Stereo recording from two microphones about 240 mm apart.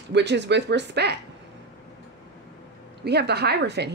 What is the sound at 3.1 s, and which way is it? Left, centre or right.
Speech, right.